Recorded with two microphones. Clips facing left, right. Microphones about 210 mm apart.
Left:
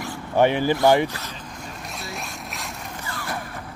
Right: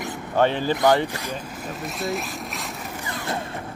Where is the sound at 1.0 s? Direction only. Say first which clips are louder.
Right 1 dB; 15° right (ahead or behind).